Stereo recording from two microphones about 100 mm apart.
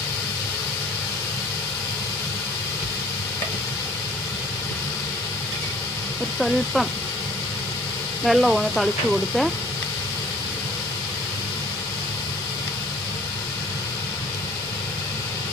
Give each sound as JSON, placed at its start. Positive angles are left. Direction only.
{"t": 6.4, "sound": "speech", "side_deg": 0}
{"t": 8.3, "sound": "speech", "side_deg": 0}